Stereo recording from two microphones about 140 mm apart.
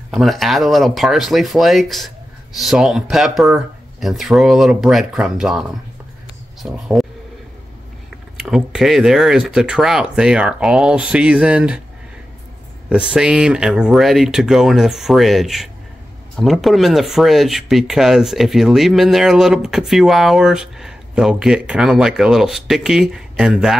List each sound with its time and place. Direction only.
0.1 s speech: centre (ahead or behind)
8.4 s speech: 5° right (ahead or behind)
12.9 s speech: 5° right (ahead or behind)